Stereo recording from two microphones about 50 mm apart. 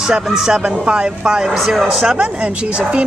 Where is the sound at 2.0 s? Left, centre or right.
Centre.